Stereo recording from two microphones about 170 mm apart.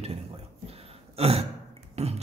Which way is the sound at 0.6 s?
35° right (ahead or behind).